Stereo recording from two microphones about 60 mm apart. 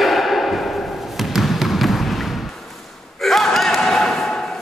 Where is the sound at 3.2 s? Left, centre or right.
Centre.